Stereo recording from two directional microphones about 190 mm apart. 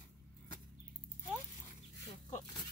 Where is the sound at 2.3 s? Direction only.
20° left (ahead or behind).